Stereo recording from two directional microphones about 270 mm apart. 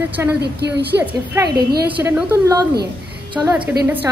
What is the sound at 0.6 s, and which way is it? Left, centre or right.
Speech, right.